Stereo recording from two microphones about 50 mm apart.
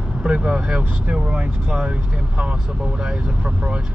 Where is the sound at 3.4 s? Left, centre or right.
Right.